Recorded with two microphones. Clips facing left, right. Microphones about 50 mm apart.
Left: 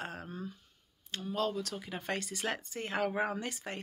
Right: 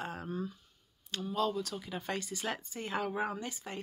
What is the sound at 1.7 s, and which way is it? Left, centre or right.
Speech, left.